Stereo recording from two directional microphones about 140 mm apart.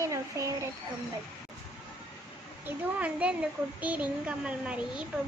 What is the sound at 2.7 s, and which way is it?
A child's voice, 10° right (ahead or behind).